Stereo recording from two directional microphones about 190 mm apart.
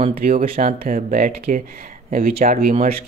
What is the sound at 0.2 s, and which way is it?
Speech, 45° right (ahead or behind).